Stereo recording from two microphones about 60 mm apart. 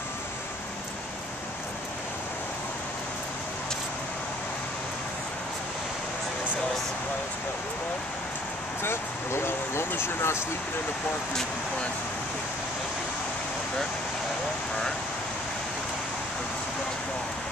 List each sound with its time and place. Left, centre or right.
8.8 s speech: left